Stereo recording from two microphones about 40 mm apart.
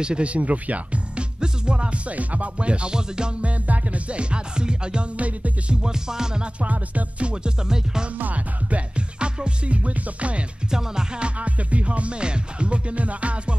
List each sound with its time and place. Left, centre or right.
0.0 s speech: right
3.4 s music: right
5.1 s music: right
5.8 s music: centre
6.6 s music: right
7.6 s music: centre
8.2 s music: right
10.7 s music: centre
11.2 s music: right